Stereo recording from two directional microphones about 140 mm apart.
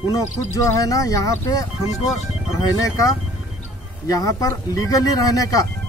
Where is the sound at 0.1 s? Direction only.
20° left (ahead or behind).